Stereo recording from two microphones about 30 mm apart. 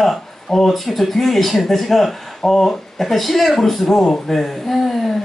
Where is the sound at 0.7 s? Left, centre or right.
Centre.